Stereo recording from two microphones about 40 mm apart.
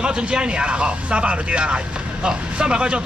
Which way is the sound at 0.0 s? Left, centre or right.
Right.